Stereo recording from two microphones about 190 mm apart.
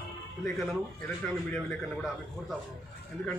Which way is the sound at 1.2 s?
5° left (ahead or behind).